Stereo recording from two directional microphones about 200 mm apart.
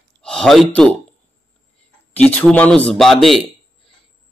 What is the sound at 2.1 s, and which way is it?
Speech, 10° left (ahead or behind).